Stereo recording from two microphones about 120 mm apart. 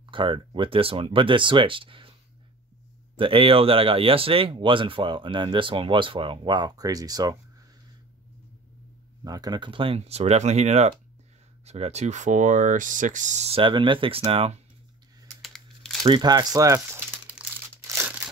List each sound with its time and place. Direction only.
0.1 s speech: 45° right (ahead or behind)
3.2 s speech: 50° right (ahead or behind); by 7.3 s 30° right (ahead or behind)
9.2 s speech: 30° right (ahead or behind); by 13.6 s 75° right (ahead or behind)
13.6 s speech: 45° right (ahead or behind)
14.2 s speech: 60° right (ahead or behind)
15.4 s crumpling: centre (ahead or behind)
16.1 s speech: 35° right (ahead or behind); by 17.4 s 20° right (ahead or behind)
18.0 s tearing: 10° right (ahead or behind)